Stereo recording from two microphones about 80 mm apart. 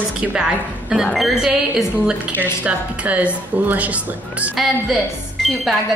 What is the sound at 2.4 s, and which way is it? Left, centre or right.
Speech, centre.